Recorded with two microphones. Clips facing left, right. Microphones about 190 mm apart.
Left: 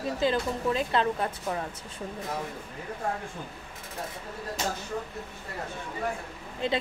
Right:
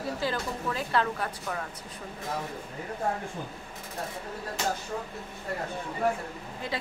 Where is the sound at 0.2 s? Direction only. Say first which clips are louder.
Left 5 dB; 20° left (ahead or behind).